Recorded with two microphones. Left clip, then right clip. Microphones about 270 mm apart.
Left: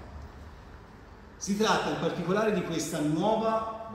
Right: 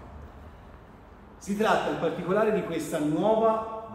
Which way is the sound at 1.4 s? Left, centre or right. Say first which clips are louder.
Right 2 dB; centre.